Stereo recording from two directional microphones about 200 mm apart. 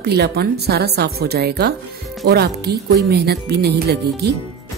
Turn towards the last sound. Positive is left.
turn(degrees=-55)  # may be behind; listen again after turning